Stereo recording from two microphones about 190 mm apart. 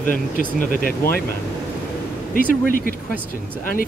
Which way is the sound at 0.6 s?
50° left (ahead or behind).